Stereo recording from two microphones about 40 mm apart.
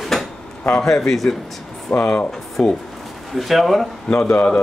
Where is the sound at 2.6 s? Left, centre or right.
Centre.